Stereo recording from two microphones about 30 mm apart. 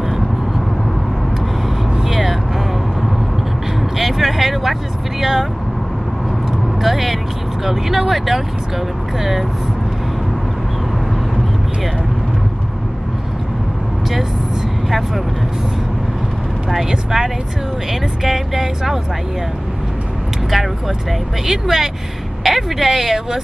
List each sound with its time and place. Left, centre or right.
2.0 s vehicle: centre
4.0 s a sound: centre
5.2 s speech: centre
6.8 s speech: centre
16.9 s speech: centre
21.5 s speech: centre
22.4 s a sound: centre
22.8 s speech: centre